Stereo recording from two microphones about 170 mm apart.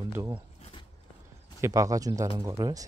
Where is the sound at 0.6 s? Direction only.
30° left (ahead or behind).